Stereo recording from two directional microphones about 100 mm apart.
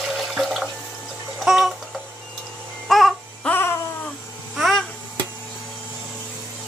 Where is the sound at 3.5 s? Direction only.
20° left (ahead or behind).